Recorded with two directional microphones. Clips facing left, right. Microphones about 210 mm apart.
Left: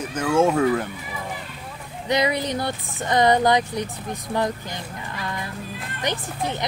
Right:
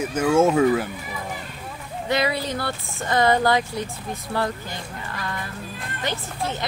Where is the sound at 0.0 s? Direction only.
10° right (ahead or behind).